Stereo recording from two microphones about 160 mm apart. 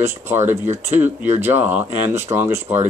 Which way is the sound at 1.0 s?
15° right (ahead or behind).